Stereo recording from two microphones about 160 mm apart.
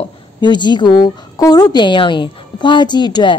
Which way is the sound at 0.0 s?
30° left (ahead or behind).